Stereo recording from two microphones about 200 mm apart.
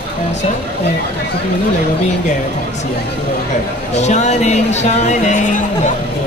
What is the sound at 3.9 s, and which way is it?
Speech, 35° left (ahead or behind).